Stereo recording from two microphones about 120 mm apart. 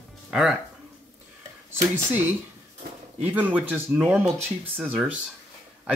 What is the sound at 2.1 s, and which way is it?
Speech, 15° right (ahead or behind).